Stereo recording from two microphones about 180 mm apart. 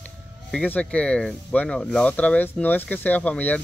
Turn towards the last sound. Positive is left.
turn(degrees=10)  # may be behind; listen again after turning